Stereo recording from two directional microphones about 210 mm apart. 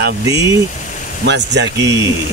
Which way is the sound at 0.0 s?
55° right (ahead or behind).